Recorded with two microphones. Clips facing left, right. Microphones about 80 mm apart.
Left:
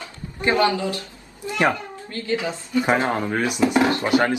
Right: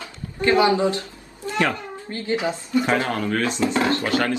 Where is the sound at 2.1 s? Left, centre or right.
Right.